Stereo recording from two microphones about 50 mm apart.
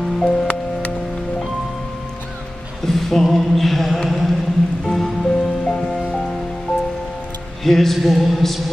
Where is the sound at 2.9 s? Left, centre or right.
Centre.